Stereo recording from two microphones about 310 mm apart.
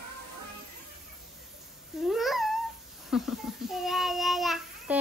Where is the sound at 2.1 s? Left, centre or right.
Centre.